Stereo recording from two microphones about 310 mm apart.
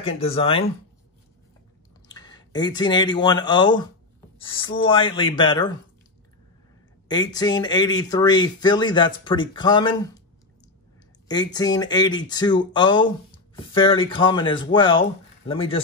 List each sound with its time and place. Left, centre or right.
0.0 s speech: centre
2.0 s speech: centre
7.1 s speech: centre
11.2 s speech: centre